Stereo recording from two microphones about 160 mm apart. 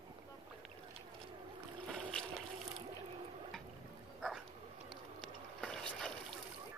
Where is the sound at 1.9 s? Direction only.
5° left (ahead or behind).